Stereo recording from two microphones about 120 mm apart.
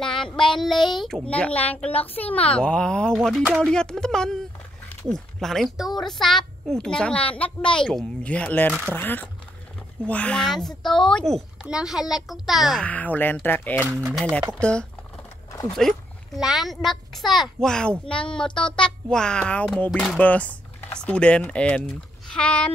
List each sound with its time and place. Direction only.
0.0 s child singing: 5° left (ahead or behind)
0.9 s a child's voice: 5° left (ahead or behind)
12.8 s a child's voice: 15° left (ahead or behind)
20.2 s a child's voice: 10° left (ahead or behind)